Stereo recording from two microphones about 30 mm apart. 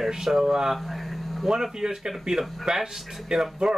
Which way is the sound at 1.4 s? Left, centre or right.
Centre.